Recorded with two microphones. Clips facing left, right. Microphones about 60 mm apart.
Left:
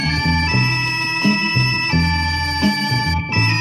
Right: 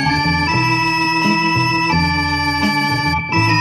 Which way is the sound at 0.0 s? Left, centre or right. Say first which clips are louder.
Right 4 dB; right.